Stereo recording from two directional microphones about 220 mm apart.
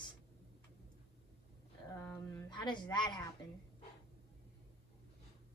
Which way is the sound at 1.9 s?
10° left (ahead or behind).